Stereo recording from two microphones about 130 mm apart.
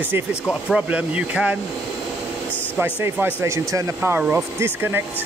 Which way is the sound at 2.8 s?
10° right (ahead or behind).